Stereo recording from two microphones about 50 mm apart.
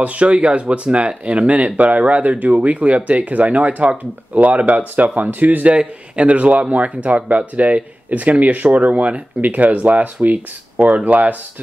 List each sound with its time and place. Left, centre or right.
0.0 s a man's voice: right